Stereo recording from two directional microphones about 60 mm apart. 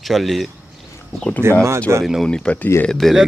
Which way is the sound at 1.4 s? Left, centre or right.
Right.